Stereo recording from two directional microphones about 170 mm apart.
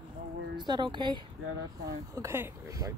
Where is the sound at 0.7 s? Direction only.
25° right (ahead or behind).